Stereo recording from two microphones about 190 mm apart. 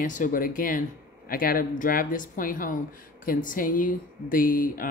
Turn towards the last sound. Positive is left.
turn(degrees=45)  # may be behind; listen again after turning